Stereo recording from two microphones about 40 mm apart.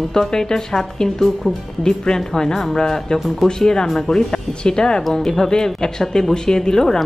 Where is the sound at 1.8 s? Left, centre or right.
Centre.